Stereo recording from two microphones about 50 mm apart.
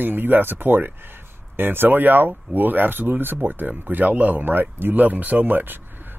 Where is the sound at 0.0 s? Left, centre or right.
Right.